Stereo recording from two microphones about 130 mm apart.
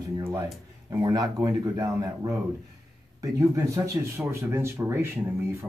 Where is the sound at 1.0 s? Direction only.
30° right (ahead or behind).